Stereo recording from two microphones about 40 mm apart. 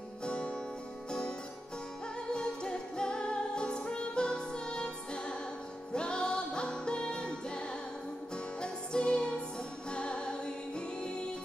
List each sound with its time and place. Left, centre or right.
0.2 s music: left
2.3 s music: left